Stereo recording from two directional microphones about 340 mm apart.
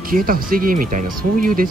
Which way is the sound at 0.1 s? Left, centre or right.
Right.